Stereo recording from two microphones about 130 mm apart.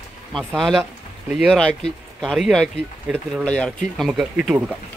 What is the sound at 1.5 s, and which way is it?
Speech, 5° left (ahead or behind).